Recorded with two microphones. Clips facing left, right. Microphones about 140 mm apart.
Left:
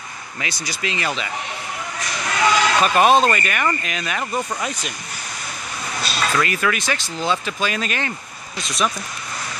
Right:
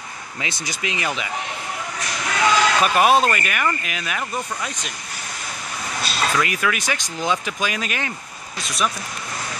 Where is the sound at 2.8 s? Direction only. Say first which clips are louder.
Left 3 dB; 5° right (ahead or behind).